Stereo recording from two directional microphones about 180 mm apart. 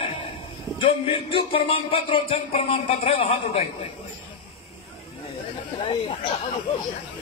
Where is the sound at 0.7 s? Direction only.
30° left (ahead or behind).